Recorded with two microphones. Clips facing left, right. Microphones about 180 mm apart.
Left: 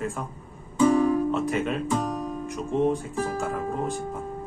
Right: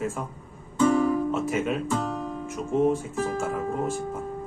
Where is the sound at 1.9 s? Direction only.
15° left (ahead or behind).